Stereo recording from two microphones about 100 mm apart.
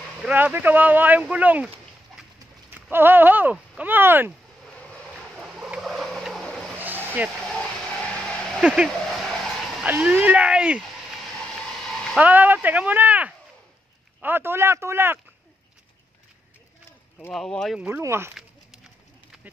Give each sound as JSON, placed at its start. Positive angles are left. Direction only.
{"t": 0.3, "sound": "speech", "side_deg": -20}
{"t": 2.7, "sound": "speech", "side_deg": -20}
{"t": 5.3, "sound": "turkey", "side_deg": 0}
{"t": 6.8, "sound": "vehicle", "side_deg": -20}
{"t": 7.3, "sound": "a sound", "side_deg": 10}
{"t": 8.6, "sound": "speech", "side_deg": -5}
{"t": 9.0, "sound": "vehicle", "side_deg": 5}
{"t": 9.8, "sound": "speech", "side_deg": -15}
{"t": 11.9, "sound": "a sound", "side_deg": 5}
{"t": 12.2, "sound": "speech", "side_deg": -15}
{"t": 17.3, "sound": "speech", "side_deg": 5}
{"t": 17.7, "sound": "speech", "side_deg": -15}